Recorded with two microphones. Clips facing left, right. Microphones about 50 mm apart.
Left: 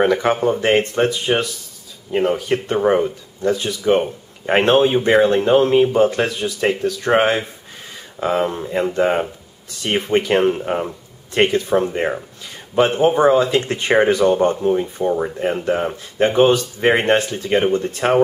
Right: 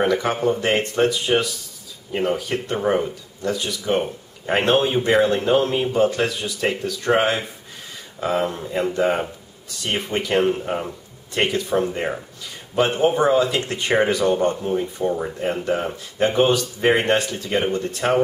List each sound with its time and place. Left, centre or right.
0.0 s speech: left
2.4 s speech: left
4.9 s speech: centre
7.1 s speech: left
9.8 s speech: centre
13.9 s speech: centre